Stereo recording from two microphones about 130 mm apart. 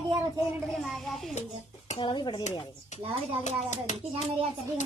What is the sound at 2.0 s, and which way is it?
Speech, 35° left (ahead or behind).